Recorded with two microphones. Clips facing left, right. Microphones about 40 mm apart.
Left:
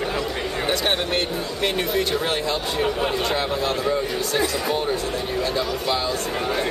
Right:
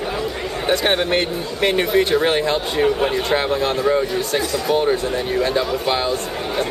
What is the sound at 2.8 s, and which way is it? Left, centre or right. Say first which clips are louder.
Speech: right 6 dB; centre.